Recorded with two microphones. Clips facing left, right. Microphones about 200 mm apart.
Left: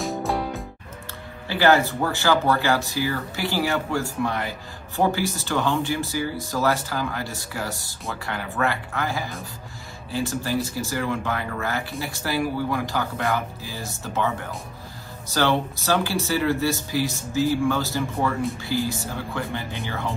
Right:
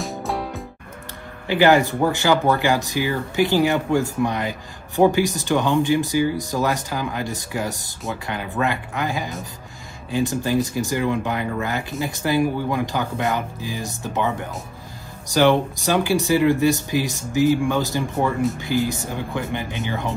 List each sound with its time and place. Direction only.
0.0 s music: centre (ahead or behind)
1.5 s speech: 15° right (ahead or behind)